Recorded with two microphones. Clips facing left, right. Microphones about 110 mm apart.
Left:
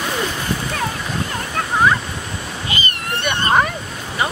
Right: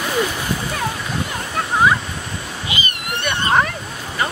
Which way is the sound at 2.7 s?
20° right (ahead or behind).